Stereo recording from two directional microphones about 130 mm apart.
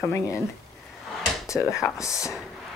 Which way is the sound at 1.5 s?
25° left (ahead or behind).